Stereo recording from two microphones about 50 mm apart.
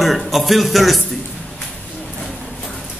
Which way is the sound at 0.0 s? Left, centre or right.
Centre.